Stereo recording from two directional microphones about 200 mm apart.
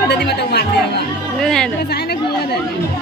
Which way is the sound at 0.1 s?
55° left (ahead or behind).